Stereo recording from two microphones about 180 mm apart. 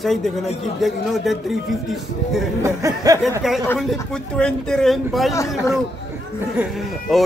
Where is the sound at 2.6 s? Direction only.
20° right (ahead or behind).